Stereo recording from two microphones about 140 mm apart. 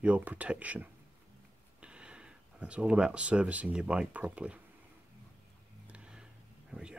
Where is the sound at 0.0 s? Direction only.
10° right (ahead or behind).